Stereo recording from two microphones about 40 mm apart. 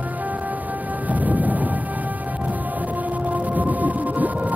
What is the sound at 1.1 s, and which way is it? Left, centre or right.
Music, right.